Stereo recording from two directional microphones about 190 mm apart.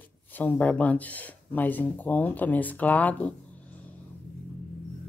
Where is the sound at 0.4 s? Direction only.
10° left (ahead or behind).